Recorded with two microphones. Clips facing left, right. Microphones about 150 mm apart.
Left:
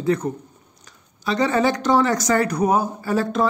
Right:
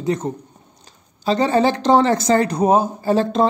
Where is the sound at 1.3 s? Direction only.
30° right (ahead or behind).